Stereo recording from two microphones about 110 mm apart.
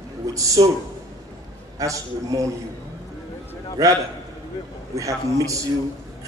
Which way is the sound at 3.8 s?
30° right (ahead or behind).